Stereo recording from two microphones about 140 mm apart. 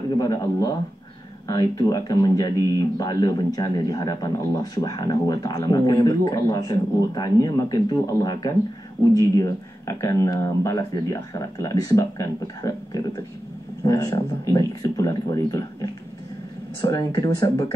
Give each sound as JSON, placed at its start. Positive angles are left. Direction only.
{"t": 0.2, "sound": "speech", "side_deg": 25}